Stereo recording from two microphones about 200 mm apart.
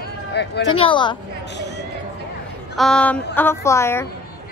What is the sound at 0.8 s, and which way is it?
Speech, 25° left (ahead or behind).